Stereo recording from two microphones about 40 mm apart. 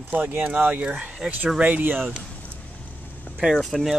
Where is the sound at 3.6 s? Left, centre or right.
Centre.